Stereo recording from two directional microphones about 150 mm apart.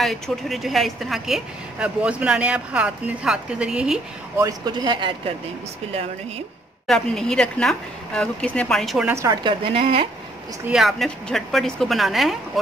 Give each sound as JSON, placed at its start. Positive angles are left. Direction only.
{"t": 0.0, "sound": "a woman's voice", "side_deg": 0}
{"t": 4.4, "sound": "speech", "side_deg": -25}
{"t": 6.9, "sound": "a woman's voice", "side_deg": 5}
{"t": 9.1, "sound": "speech", "side_deg": -20}
{"t": 9.4, "sound": "a woman's voice", "side_deg": -35}
{"t": 10.7, "sound": "a woman's voice", "side_deg": 0}